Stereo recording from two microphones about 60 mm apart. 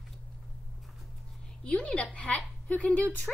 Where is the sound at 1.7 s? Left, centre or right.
Centre.